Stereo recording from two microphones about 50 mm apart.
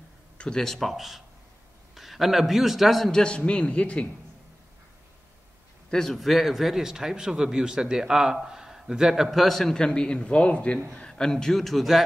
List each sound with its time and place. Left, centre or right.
0.4 s speech: centre
0.7 s a man's voice: centre
3.1 s a man's voice: centre
5.9 s a man's voice: centre
6.1 s speech: centre
9.8 s a man's voice: centre